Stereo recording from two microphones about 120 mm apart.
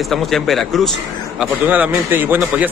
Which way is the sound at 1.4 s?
15° right (ahead or behind).